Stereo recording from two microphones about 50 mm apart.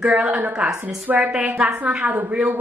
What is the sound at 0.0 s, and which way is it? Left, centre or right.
A woman's voice, right.